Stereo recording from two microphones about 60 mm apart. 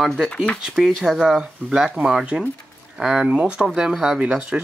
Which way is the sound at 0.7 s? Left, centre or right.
Centre.